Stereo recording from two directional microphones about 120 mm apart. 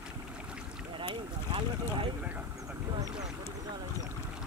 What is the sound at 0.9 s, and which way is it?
Boat, 45° right (ahead or behind).